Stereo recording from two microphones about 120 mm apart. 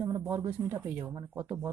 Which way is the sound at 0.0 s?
20° right (ahead or behind).